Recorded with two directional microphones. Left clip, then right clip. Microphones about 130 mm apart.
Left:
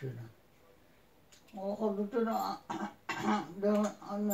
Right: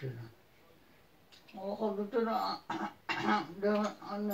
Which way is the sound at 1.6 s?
5° left (ahead or behind).